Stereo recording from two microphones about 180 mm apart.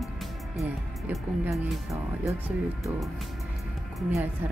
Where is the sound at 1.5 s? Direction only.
Centre (ahead or behind).